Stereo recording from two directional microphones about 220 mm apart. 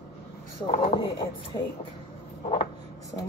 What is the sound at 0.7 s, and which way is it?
Speech, 25° left (ahead or behind).